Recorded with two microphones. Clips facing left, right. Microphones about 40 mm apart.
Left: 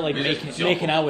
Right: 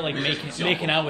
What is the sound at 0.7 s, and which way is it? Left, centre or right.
Speech, right.